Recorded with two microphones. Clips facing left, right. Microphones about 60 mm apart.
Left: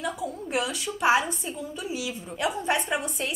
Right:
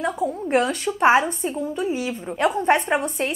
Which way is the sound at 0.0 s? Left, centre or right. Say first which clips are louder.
Right 7 dB; right.